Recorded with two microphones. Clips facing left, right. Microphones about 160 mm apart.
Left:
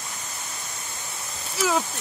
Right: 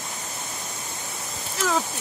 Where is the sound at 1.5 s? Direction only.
10° left (ahead or behind).